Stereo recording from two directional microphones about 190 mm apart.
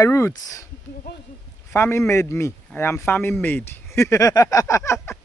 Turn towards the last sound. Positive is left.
turn(degrees=15)  # may be behind; listen again after turning